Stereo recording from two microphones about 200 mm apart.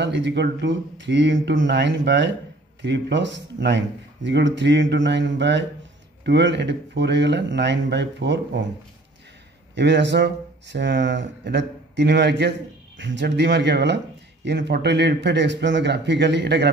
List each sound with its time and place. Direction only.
0.0 s speech: 60° right (ahead or behind)
9.8 s speech: 60° right (ahead or behind)